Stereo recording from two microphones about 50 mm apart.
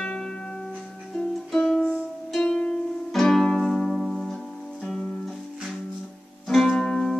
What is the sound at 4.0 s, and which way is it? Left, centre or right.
Music, centre.